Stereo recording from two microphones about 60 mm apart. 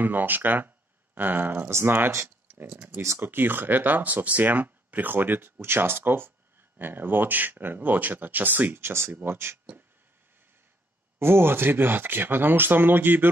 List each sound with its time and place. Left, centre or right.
0.0 s speech: right
1.7 s speech: right
2.9 s speech: right
3.2 s speech: right
8.8 s speech: right
11.1 s speech: right